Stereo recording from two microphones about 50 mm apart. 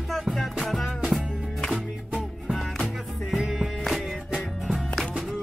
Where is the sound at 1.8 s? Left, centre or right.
Centre.